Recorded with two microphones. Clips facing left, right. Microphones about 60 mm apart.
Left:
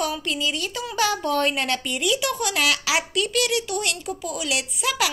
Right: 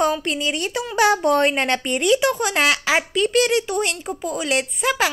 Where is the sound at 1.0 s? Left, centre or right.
Right.